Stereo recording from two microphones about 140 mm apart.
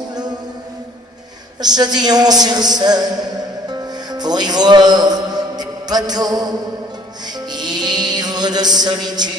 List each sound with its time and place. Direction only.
0.1 s music: 30° right (ahead or behind)
1.6 s a woman's voice: 30° right (ahead or behind)
3.6 s music: 30° right (ahead or behind)